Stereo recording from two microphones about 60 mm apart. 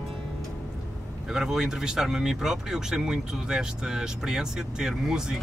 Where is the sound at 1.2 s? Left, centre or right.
Centre.